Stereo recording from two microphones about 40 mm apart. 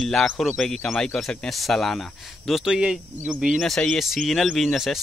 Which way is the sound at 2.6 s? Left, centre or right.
Right.